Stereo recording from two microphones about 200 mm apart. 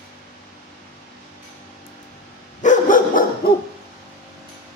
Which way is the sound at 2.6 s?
40° left (ahead or behind).